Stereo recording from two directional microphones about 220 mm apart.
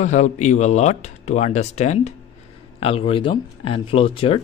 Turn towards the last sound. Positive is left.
turn(degrees=25)  # may be behind; listen again after turning